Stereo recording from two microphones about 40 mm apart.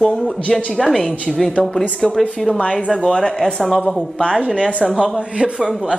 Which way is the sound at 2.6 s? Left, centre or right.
Left.